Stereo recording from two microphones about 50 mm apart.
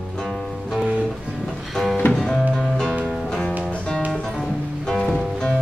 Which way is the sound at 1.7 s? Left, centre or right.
Centre.